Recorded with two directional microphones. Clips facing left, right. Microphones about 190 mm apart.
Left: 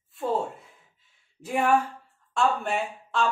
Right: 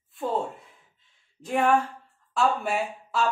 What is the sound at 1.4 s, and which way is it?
Speech, 10° left (ahead or behind).